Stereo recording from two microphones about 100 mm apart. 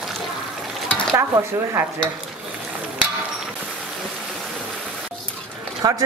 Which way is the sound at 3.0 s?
10° right (ahead or behind).